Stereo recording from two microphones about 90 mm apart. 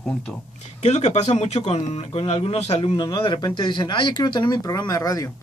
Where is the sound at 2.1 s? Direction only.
90° left.